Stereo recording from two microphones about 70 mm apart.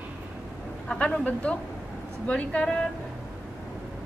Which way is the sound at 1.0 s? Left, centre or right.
Centre.